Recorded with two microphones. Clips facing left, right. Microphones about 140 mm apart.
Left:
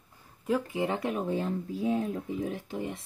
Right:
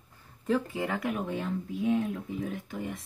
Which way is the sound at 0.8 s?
25° left (ahead or behind).